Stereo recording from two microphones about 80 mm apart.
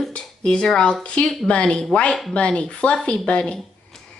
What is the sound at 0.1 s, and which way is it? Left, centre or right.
A child's voice, centre.